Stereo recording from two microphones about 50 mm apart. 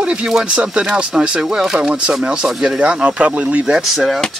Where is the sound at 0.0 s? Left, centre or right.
Right.